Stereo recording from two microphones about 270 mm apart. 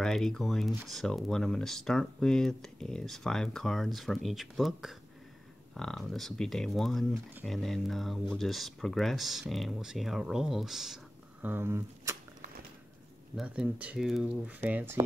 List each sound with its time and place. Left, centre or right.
0.0 s speech: centre
13.4 s speech: centre